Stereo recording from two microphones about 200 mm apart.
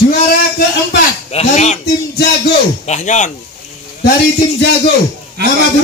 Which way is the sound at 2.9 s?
35° left (ahead or behind).